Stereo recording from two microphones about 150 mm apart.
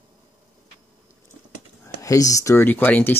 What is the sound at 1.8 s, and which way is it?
Speech, 20° left (ahead or behind).